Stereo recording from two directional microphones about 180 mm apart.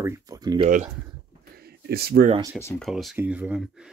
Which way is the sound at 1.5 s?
60° right (ahead or behind).